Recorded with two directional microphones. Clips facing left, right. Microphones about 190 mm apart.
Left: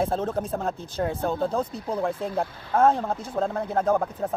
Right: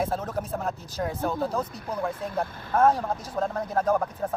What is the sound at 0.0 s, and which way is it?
Speech, 25° left (ahead or behind).